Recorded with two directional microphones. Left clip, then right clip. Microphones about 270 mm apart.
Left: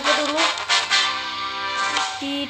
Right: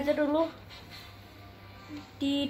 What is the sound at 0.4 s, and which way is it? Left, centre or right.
Music, left.